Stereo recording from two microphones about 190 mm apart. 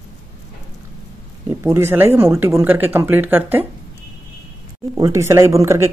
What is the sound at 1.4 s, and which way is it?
Speech, 15° right (ahead or behind).